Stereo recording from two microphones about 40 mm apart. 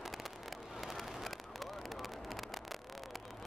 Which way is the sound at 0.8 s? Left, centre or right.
Centre.